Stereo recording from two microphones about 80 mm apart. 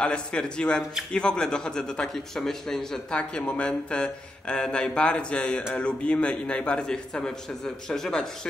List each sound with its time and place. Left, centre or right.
0.0 s a man's voice: centre